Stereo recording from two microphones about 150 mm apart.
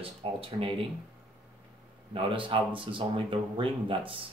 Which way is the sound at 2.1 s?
35° right (ahead or behind).